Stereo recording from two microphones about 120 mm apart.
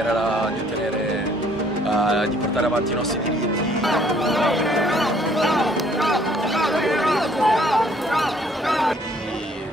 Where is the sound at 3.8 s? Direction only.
Centre (ahead or behind).